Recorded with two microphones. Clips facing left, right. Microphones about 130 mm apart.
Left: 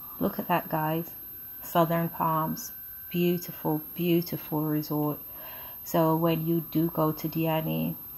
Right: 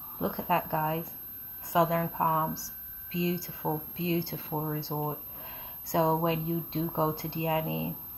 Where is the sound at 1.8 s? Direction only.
30° right (ahead or behind).